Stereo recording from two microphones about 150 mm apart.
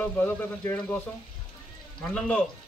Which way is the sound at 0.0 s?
10° left (ahead or behind).